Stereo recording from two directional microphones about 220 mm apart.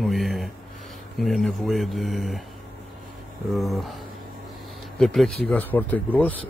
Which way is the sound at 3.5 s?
Centre (ahead or behind).